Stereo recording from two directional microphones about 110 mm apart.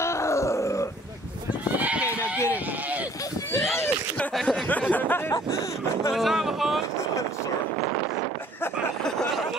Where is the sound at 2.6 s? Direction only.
15° right (ahead or behind).